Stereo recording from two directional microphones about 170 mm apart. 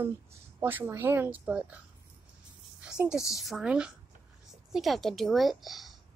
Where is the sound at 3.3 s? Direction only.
Centre (ahead or behind).